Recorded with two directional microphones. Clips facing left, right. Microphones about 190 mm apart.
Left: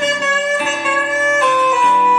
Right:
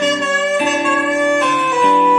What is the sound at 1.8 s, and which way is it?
Music, 20° right (ahead or behind).